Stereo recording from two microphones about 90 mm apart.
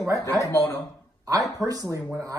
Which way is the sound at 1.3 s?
40° right (ahead or behind).